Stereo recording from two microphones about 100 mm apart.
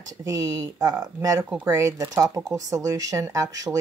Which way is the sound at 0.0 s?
35° right (ahead or behind).